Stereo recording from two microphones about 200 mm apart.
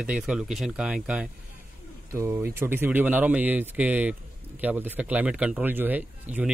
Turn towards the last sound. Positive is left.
turn(degrees=-10)  # may be behind; listen again after turning